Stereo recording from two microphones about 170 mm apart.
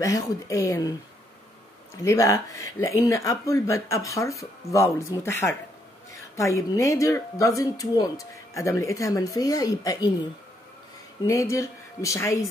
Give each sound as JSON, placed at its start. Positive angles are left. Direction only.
{"t": 0.0, "sound": "speech", "side_deg": 20}
{"t": 2.0, "sound": "speech", "side_deg": 20}
{"t": 11.2, "sound": "speech", "side_deg": 20}